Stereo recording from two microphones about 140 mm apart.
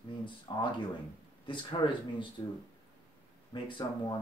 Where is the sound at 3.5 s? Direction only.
35° left (ahead or behind).